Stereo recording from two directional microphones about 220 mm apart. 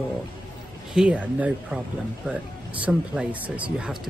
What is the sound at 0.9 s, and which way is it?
Speech, 5° right (ahead or behind).